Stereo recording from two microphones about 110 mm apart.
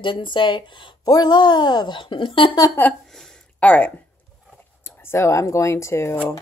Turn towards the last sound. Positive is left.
turn(degrees=25)  # may be behind; listen again after turning